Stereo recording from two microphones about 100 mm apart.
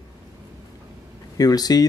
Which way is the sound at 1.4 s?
40° left (ahead or behind).